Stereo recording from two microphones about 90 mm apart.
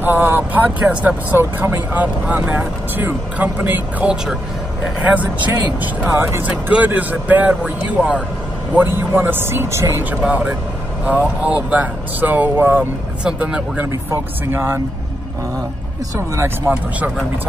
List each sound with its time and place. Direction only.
0.0 s speech: 20° right (ahead or behind)
10.2 s speech: 15° right (ahead or behind)
13.2 s speech: 10° right (ahead or behind)
14.5 s speech: 25° right (ahead or behind)
16.3 s speech: 25° right (ahead or behind)